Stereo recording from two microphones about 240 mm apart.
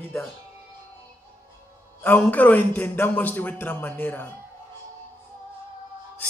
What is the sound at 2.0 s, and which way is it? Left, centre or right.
A man's voice, centre.